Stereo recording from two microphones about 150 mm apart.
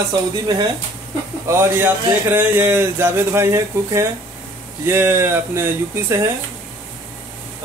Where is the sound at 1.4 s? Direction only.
15° right (ahead or behind).